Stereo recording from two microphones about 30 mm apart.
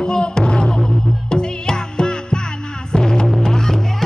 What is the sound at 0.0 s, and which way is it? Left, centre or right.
Music, left.